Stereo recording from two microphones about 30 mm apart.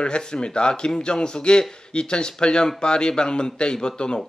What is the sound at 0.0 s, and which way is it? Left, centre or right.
A man's voice, left.